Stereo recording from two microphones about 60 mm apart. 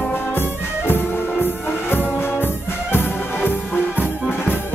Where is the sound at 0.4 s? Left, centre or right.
Left.